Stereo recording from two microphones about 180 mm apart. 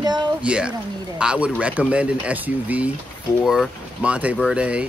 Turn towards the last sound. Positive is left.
turn(degrees=-5)  # may be behind; listen again after turning